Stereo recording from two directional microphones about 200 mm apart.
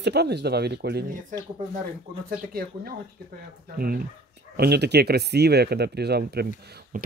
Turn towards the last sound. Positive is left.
turn(degrees=-55)  # may be behind; listen again after turning